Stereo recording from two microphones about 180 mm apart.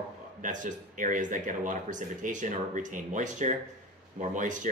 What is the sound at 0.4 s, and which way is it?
Speech, 45° right (ahead or behind).